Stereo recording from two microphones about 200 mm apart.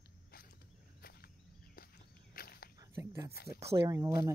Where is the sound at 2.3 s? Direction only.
50° left (ahead or behind).